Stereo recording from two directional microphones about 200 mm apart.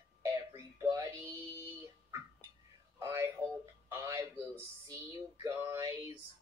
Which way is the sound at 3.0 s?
15° right (ahead or behind).